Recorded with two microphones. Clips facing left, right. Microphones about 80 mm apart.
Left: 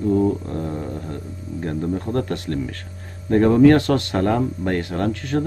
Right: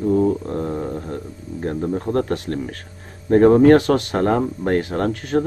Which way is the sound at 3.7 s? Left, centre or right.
Right.